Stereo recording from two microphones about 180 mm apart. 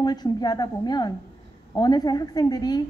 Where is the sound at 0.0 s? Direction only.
20° left (ahead or behind).